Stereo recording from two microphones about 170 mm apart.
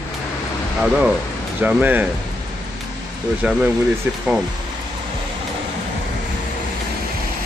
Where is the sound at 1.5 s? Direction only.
10° right (ahead or behind).